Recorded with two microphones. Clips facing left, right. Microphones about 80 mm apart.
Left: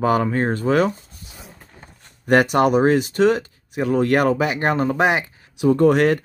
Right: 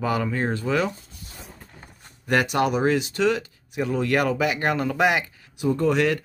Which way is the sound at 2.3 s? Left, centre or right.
Left.